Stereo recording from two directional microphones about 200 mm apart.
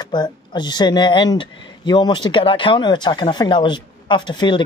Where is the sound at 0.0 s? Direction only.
20° left (ahead or behind).